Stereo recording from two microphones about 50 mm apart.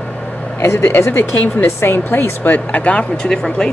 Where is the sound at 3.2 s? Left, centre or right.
Centre.